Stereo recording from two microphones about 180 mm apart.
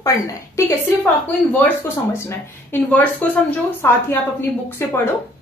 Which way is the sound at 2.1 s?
15° left (ahead or behind).